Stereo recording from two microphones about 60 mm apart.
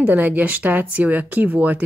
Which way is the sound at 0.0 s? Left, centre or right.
Right.